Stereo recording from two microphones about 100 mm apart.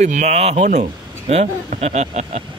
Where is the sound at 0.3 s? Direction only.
90° right.